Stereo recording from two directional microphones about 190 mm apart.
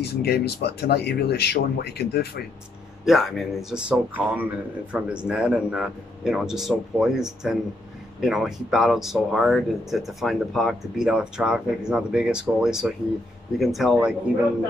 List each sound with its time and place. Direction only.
0.0 s speech: 60° left (ahead or behind)
3.1 s speech: centre (ahead or behind)